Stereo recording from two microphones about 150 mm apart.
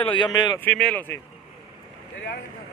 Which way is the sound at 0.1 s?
30° left (ahead or behind).